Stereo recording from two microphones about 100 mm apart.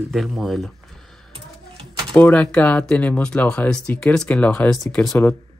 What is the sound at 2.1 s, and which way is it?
Speech, 15° left (ahead or behind).